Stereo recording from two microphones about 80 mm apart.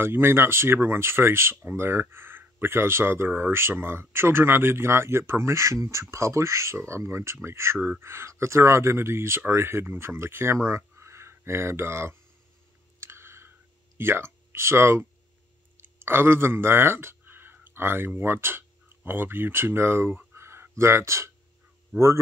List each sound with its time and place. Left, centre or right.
0.0 s speech: right
13.0 s clicking: right
13.9 s speech: right